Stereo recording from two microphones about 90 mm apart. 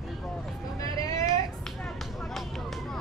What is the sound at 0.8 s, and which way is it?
Vehicle, 40° left (ahead or behind).